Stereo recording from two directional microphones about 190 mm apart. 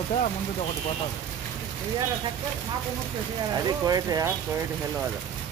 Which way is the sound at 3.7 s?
20° right (ahead or behind).